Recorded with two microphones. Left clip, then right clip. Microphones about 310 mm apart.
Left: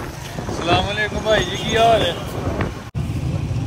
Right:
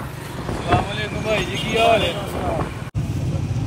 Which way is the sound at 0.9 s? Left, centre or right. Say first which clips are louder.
Left 4 dB; centre.